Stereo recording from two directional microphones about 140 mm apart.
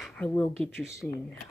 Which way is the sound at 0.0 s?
10° left (ahead or behind).